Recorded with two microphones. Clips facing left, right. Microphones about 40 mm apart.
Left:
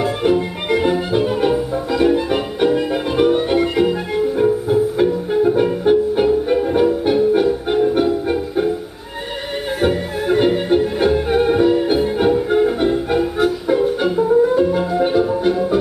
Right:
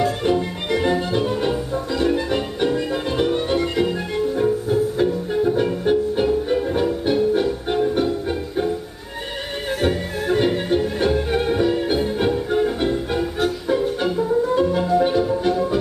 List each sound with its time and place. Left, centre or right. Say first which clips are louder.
0.0 s music: left 3 dB; left
9.8 s music: left 4 dB; centre